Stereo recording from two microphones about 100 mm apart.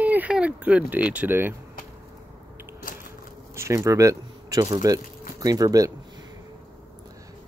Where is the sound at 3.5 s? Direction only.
30° right (ahead or behind).